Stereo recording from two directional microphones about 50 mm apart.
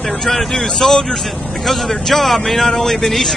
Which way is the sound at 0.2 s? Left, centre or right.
Centre.